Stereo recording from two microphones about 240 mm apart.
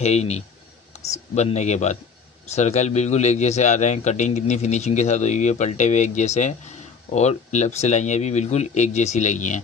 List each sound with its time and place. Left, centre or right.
0.0 s a man's voice: left
0.9 s a sound: left
1.3 s a man's voice: left